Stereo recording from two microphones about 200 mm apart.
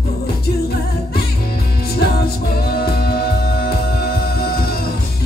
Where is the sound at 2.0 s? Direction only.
50° left (ahead or behind).